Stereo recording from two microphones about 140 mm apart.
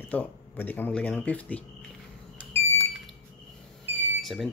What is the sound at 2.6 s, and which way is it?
Smoke detector, 15° left (ahead or behind).